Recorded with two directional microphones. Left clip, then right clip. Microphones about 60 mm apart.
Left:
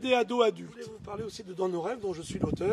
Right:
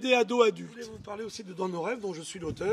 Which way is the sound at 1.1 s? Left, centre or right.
Left.